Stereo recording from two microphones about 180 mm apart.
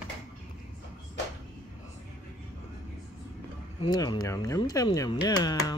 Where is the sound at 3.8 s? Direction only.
25° left (ahead or behind).